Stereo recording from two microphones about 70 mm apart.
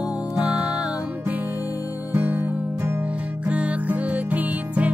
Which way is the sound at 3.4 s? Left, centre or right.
Centre.